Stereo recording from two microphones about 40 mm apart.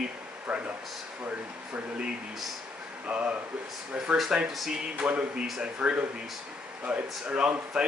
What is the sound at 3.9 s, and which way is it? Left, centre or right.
Speech, right.